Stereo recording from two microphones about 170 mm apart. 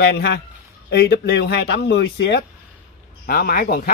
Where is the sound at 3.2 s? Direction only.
60° left (ahead or behind).